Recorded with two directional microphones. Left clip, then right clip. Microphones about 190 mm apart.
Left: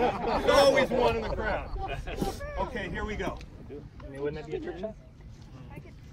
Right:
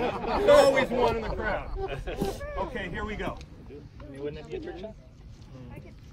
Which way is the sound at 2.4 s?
45° left (ahead or behind).